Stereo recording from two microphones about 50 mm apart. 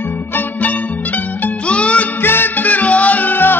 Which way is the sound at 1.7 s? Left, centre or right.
Left.